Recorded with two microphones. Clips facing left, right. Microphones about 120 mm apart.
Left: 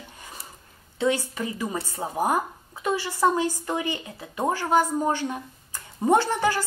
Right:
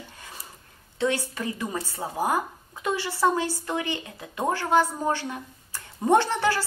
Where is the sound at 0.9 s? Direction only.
10° left (ahead or behind).